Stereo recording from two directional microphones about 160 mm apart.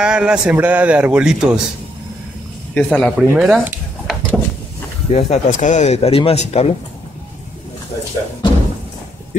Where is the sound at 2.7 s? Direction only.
10° left (ahead or behind).